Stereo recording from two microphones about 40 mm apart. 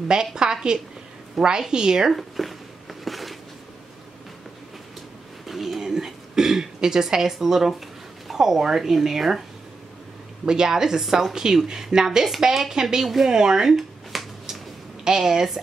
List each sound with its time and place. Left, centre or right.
0.1 s a woman's voice: centre
2.1 s a sound: centre
5.5 s throat clearing: centre
8.3 s a woman's voice: centre
10.4 s a woman's voice: centre
13.3 s a woman's voice: centre